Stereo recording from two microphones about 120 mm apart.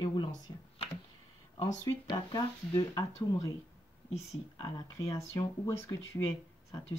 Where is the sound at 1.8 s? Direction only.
35° left (ahead or behind).